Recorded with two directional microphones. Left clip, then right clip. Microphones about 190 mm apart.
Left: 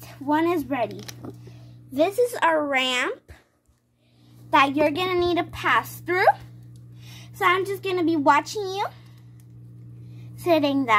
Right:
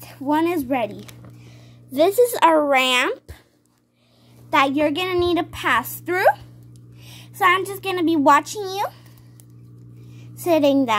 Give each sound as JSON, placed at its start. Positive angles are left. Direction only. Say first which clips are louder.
{"t": 0.0, "sound": "speech", "louder": "right 2 dB", "side_deg": -15}
{"t": 1.9, "sound": "a woman's voice", "louder": "right 5 dB", "side_deg": -35}
{"t": 4.5, "sound": "a woman's voice", "louder": "right 1 dB", "side_deg": -20}
{"t": 10.3, "sound": "a woman's voice", "louder": "right 4 dB", "side_deg": -30}